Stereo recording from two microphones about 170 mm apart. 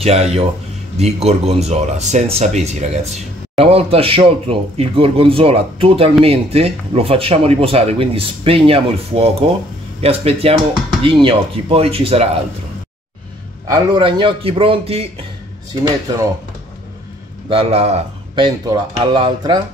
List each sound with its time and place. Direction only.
0.0 s speech: 35° right (ahead or behind)
13.7 s speech: 25° right (ahead or behind)
17.5 s speech: 35° right (ahead or behind)